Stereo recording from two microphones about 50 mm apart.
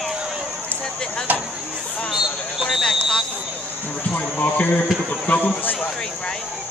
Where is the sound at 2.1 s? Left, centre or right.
Centre.